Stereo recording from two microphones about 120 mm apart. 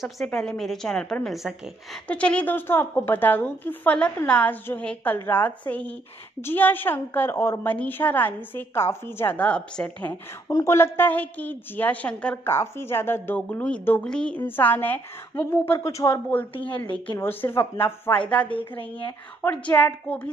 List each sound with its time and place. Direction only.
0.0 s a woman's voice: 5° left (ahead or behind)
10.5 s a woman's voice: 25° left (ahead or behind); by 12.4 s 10° left (ahead or behind)
12.4 s a woman's voice: 20° left (ahead or behind)
16.5 s a woman's voice: 45° left (ahead or behind)
17.2 s speech: 20° left (ahead or behind)
18.5 s a woman's voice: 45° left (ahead or behind)
19.5 s a woman's voice: 10° left (ahead or behind)